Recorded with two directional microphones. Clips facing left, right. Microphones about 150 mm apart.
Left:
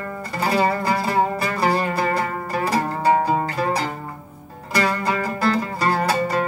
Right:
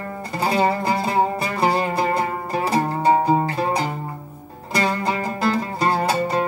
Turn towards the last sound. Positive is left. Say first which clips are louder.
# even
turn(degrees=-25)  # may be behind; listen again after turning